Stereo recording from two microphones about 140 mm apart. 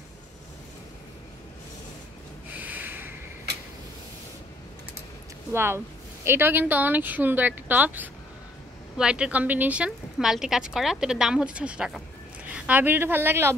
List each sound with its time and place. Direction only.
2.6 s snort: 10° right (ahead or behind)
5.5 s a woman's voice: 15° right (ahead or behind)